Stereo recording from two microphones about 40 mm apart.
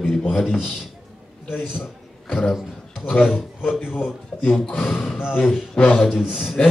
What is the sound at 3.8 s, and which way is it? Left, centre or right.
Speech, left.